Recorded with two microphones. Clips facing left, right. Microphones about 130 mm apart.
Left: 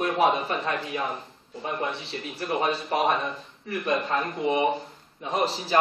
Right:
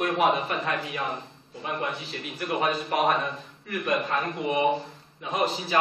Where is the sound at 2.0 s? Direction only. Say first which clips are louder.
Left 1 dB; 30° left (ahead or behind).